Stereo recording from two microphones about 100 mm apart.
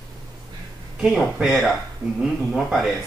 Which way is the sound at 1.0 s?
5° right (ahead or behind).